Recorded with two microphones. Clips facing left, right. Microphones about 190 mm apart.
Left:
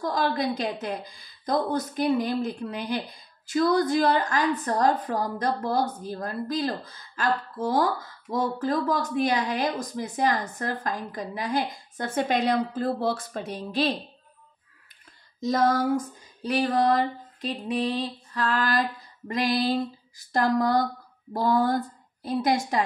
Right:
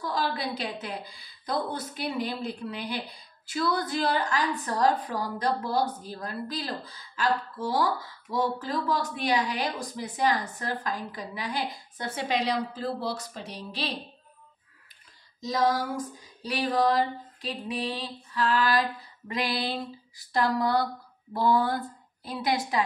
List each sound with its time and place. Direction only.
0.0 s a woman's voice: 45° left (ahead or behind)
15.4 s a woman's voice: 50° left (ahead or behind)